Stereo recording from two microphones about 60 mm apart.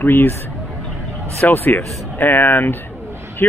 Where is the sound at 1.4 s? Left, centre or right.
Left.